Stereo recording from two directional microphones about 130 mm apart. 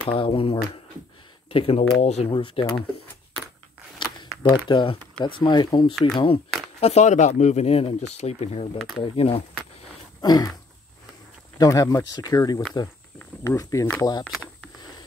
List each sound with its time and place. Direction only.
0.0 s speech: 40° left (ahead or behind)
2.3 s speech: 40° left (ahead or behind)
4.4 s speech: 35° left (ahead or behind)
5.9 s speech: centre (ahead or behind)
6.8 s speech: 55° left (ahead or behind)
8.7 s speech: centre (ahead or behind)
9.0 s speech: 50° left (ahead or behind)
10.2 s speech: 30° left (ahead or behind)
11.5 s speech: 30° left (ahead or behind)
14.3 s a sound: centre (ahead or behind)